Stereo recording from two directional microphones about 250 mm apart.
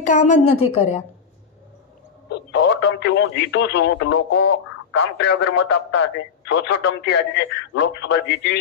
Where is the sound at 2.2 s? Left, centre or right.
Left.